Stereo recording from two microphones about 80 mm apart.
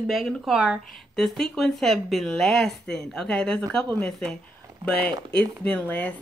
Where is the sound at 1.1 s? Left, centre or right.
Centre.